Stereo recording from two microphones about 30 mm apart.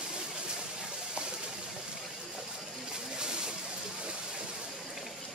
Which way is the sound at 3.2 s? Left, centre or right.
Right.